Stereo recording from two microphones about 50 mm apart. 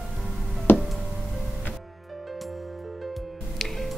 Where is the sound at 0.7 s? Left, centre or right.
Left.